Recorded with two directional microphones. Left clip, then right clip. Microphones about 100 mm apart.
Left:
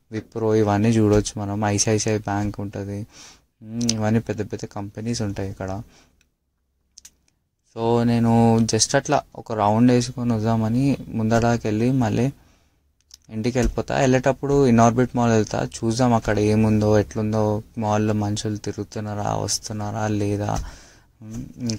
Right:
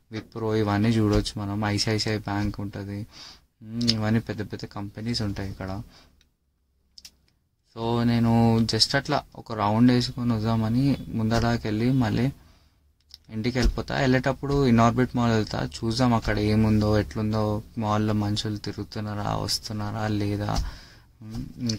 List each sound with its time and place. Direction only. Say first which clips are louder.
0.1 s speech: left 7 dB; 35° left (ahead or behind)
3.1 s speech: right 1 dB; 20° left (ahead or behind)
3.8 s speech: left 3 dB; 35° left (ahead or behind)
7.0 s typing: even; 35° left (ahead or behind)
7.7 s speech: left 6 dB; 35° left (ahead or behind)
8.3 s speech: left 5 dB; centre (ahead or behind)
8.5 s speech: left 3 dB; 35° left (ahead or behind)